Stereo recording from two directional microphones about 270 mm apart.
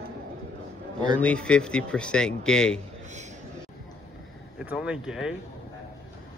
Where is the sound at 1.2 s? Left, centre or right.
Centre.